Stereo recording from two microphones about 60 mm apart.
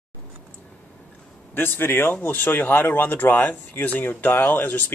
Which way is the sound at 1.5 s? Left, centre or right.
Left.